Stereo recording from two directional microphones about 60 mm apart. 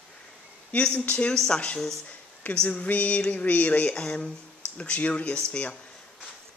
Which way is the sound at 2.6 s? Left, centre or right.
Left.